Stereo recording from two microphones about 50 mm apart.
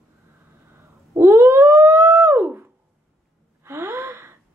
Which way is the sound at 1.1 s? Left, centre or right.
Right.